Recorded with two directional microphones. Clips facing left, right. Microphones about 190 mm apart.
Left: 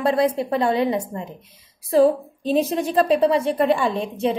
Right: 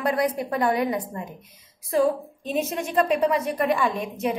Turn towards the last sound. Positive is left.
turn(degrees=30)  # may be behind; listen again after turning